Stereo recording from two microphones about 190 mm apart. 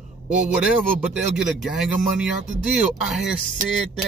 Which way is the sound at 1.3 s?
Centre (ahead or behind).